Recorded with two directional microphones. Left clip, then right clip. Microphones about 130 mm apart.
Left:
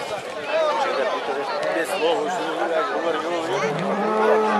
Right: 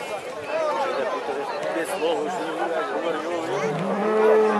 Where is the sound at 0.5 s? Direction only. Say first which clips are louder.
Left 3 dB; 15° left (ahead or behind).